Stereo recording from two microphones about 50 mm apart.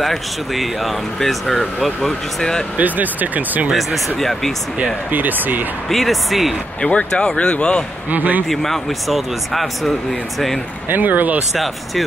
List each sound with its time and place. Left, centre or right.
0.0 s speech: centre
2.8 s speech: right
4.2 s speech: centre
4.7 s speech: right
5.9 s speech: centre
6.8 s speech: centre
8.1 s speech: right
8.5 s speech: centre
10.9 s speech: right
11.5 s speech: centre